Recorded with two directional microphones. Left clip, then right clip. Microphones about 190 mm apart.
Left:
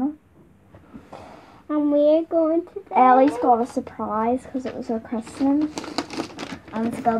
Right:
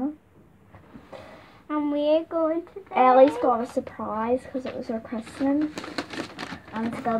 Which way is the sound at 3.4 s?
Centre (ahead or behind).